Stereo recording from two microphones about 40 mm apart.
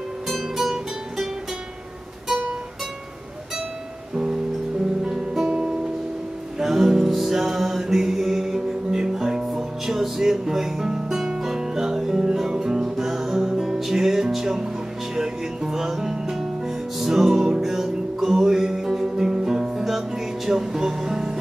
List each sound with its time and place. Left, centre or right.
0.3 s music: centre
4.1 s music: centre
5.0 s guitar: centre
6.6 s music: centre
13.4 s music: centre
13.7 s music: centre